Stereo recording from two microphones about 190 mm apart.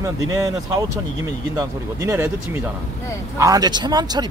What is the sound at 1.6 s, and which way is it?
Speech, 15° right (ahead or behind).